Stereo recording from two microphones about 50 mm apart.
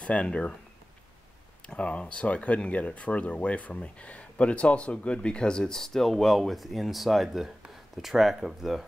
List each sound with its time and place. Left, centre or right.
0.0 s speech: left
1.7 s speech: left; by 8.8 s centre